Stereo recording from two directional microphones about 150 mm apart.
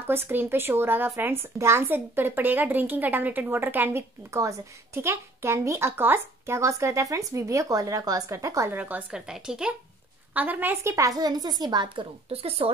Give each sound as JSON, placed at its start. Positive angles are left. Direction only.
{"t": 0.0, "sound": "a woman's voice", "side_deg": -15}